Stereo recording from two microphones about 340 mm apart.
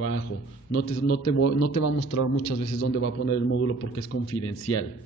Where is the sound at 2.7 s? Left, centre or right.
Left.